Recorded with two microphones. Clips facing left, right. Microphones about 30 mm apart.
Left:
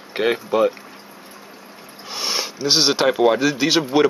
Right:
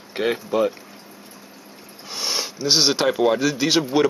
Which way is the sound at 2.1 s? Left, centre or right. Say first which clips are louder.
Left 2 dB; centre.